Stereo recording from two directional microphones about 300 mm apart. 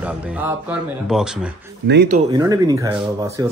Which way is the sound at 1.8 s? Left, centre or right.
Right.